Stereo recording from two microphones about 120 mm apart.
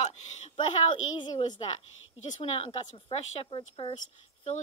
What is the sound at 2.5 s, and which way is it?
Speech, 55° left (ahead or behind).